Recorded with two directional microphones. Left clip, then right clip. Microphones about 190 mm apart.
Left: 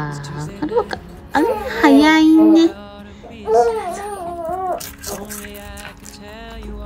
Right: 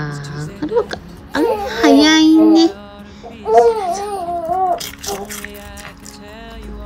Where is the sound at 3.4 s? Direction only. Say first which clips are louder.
Right 4 dB; centre (ahead or behind).